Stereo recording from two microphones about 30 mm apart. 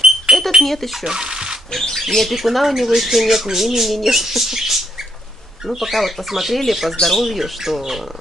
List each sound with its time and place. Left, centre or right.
0.3 s a sound: right
0.7 s speech: centre
1.0 s speech: right
1.7 s speech: centre
2.3 s speech: centre